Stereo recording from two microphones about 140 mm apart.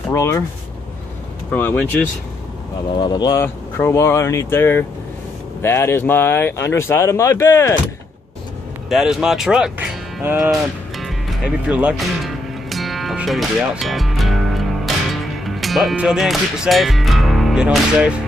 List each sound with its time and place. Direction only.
0.1 s speech: 20° left (ahead or behind)
1.5 s speech: 10° left (ahead or behind)
3.0 s speech: 30° left (ahead or behind)
3.4 s speech: 20° left (ahead or behind)
8.8 s cattle: 5° right (ahead or behind)
10.5 s speech: centre (ahead or behind)
12.6 s music: centre (ahead or behind)
15.4 s speech: centre (ahead or behind)